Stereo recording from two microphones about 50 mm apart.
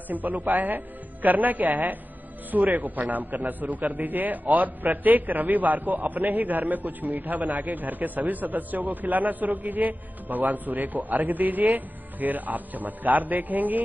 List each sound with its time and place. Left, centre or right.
0.1 s a man's voice: right